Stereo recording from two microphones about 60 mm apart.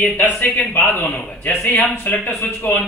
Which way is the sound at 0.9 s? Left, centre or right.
Left.